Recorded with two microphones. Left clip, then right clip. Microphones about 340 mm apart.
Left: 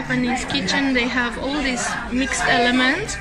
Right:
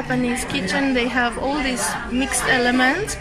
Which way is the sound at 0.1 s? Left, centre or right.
Centre.